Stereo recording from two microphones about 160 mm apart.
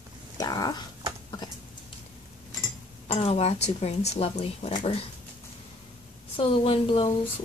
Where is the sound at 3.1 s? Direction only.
40° left (ahead or behind).